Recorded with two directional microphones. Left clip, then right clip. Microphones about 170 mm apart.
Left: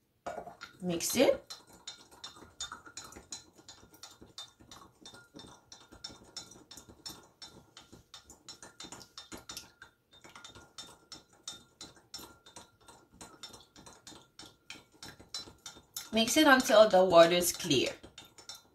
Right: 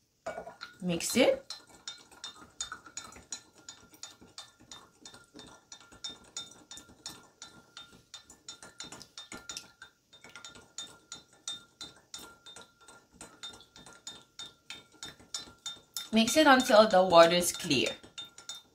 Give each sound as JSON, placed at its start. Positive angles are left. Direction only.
{"t": 0.8, "sound": "speech", "side_deg": -30}
{"t": 2.5, "sound": "chink", "side_deg": 0}
{"t": 10.2, "sound": "chink", "side_deg": 5}
{"t": 16.1, "sound": "speech", "side_deg": -25}